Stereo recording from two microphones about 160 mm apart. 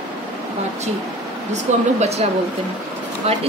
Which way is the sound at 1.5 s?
45° right (ahead or behind).